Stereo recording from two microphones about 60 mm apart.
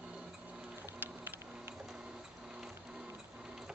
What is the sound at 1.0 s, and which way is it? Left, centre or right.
Music, right.